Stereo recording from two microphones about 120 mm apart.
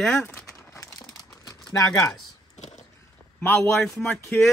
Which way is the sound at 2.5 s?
70° left (ahead or behind).